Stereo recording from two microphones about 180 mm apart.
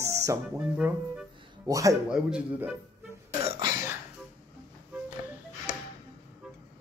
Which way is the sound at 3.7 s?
15° right (ahead or behind).